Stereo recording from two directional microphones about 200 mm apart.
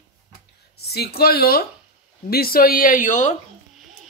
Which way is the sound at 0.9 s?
50° left (ahead or behind).